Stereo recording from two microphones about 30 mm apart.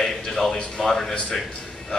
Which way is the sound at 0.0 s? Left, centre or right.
Centre.